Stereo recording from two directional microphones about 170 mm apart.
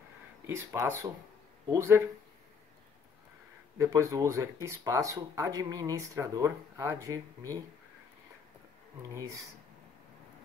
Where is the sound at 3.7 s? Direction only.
20° right (ahead or behind).